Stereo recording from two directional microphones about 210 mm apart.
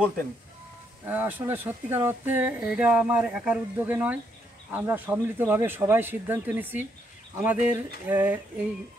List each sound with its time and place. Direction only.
1.0 s speech: 10° right (ahead or behind)